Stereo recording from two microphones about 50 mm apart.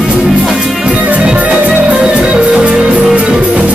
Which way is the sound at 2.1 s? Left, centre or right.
Centre.